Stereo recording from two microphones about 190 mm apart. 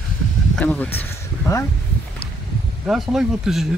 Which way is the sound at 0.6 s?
5° left (ahead or behind).